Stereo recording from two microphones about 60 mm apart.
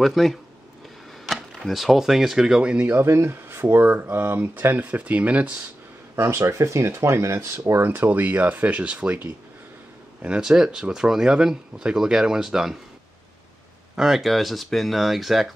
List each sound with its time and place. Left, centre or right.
0.0 s speech: centre
2.9 s speech: right
6.2 s speech: right
7.8 s speech: right
10.2 s speech: centre
13.9 s speech: centre